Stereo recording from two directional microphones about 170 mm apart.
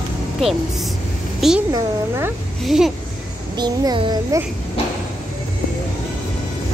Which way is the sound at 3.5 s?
25° right (ahead or behind).